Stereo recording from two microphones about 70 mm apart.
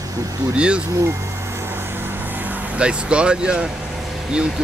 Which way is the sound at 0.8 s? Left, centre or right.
Right.